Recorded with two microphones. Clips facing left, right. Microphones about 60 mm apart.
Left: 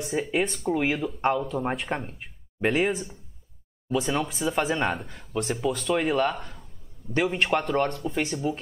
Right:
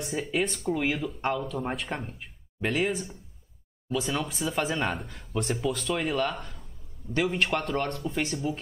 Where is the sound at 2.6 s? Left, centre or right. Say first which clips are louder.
Left 4 dB; left.